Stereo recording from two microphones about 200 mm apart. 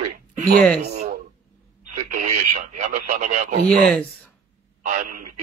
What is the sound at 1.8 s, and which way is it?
Speech, 40° right (ahead or behind).